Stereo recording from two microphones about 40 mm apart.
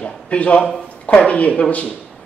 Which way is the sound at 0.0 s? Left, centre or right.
Left.